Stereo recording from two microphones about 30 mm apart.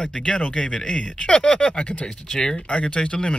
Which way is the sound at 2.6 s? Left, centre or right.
Left.